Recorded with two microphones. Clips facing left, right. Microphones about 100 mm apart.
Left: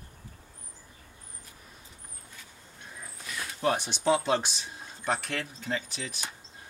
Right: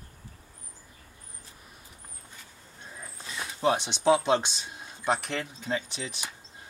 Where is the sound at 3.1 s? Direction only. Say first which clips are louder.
Right 1 dB; 25° right (ahead or behind).